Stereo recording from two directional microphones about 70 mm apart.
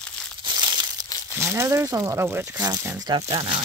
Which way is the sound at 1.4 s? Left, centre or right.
Right.